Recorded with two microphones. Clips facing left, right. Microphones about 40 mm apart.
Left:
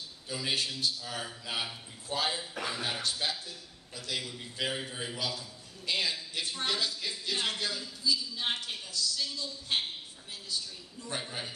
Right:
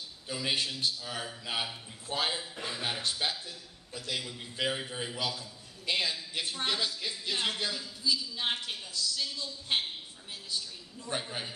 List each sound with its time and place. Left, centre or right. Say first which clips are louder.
0.3 s a man's voice: right 1 dB; centre
11.1 s a man's voice: right 2 dB; centre